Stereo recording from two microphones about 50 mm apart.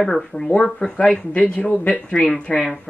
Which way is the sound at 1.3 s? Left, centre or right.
Left.